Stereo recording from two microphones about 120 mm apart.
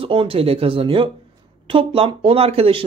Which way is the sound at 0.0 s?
50° right (ahead or behind).